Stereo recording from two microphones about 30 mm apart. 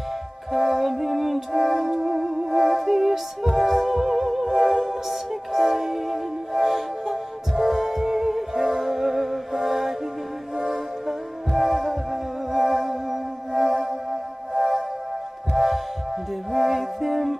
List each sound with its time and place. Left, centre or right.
0.5 s music: centre
10.5 s music: centre
12.9 s music: centre
15.5 s music: centre